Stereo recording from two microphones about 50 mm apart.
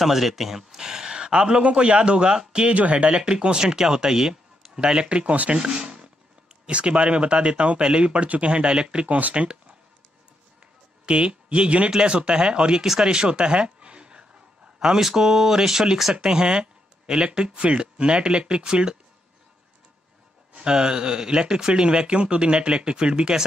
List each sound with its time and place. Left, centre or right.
0.0 s speech: centre; by 3.2 s right
3.2 s speech: centre
5.6 s a sound: centre
6.6 s speech: right
11.1 s speech: right; by 16.2 s centre
16.2 s speech: centre
20.5 s speech: centre